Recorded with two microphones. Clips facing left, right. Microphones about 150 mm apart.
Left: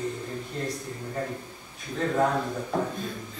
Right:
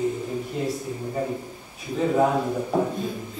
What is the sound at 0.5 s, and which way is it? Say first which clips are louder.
A man's voice: right 4 dB; 10° right (ahead or behind).